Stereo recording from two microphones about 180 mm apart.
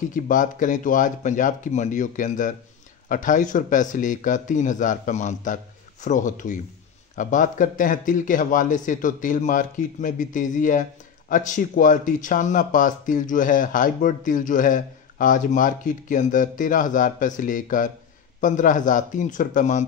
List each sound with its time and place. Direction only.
0.1 s a man's voice: 45° left (ahead or behind)